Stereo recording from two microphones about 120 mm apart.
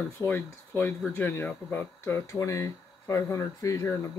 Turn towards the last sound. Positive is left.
turn(degrees=25)  # may be behind; listen again after turning